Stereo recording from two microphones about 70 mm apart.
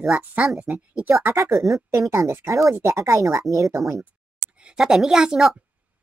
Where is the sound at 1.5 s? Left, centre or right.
Right.